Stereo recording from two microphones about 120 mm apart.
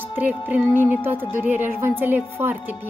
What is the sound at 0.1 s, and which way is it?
Music, 15° right (ahead or behind).